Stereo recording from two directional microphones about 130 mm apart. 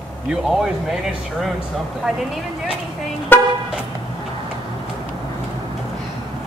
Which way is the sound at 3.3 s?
15° left (ahead or behind).